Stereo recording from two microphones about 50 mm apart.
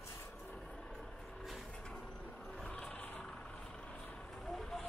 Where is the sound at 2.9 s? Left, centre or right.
Left.